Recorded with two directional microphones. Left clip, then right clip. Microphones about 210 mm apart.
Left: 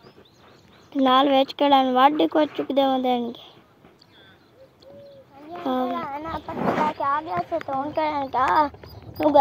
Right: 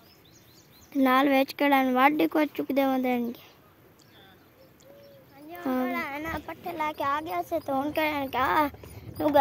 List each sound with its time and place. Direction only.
0.9 s speech: 15° right (ahead or behind)
1.3 s speech: 45° right (ahead or behind)
5.7 s a sound: 40° right (ahead or behind)
7.0 s speech: 55° right (ahead or behind)
8.2 s a child's voice: 40° right (ahead or behind)
9.1 s speech: 25° right (ahead or behind)